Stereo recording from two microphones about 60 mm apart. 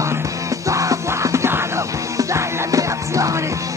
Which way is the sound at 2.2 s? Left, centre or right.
Right.